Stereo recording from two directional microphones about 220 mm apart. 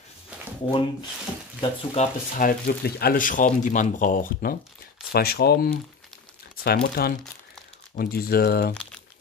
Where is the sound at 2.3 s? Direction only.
40° left (ahead or behind).